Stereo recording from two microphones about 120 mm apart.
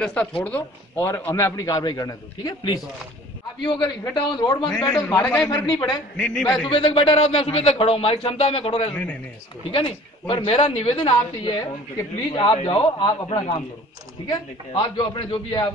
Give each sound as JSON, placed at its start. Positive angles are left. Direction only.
{"t": 0.0, "sound": "a man's voice", "side_deg": 10}
{"t": 5.2, "sound": "a man's voice", "side_deg": 10}
{"t": 5.5, "sound": "a man's voice", "side_deg": 35}
{"t": 6.1, "sound": "a man's voice", "side_deg": 5}
{"t": 6.7, "sound": "a man's voice", "side_deg": 45}
{"t": 14.2, "sound": "a man's voice", "side_deg": 40}